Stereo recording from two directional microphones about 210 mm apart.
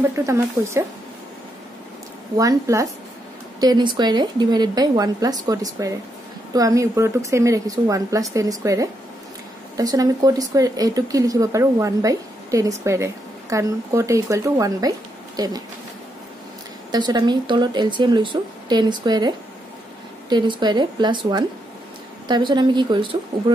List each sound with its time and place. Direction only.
0.1 s speech: 15° right (ahead or behind)
2.3 s speech: 15° right (ahead or behind)
16.9 s speech: 20° right (ahead or behind)